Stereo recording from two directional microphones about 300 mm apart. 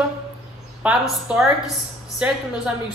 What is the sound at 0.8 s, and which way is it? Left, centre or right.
Speech, centre.